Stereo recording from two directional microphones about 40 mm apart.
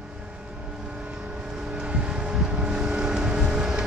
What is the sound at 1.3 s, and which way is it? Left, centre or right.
Vehicle, centre.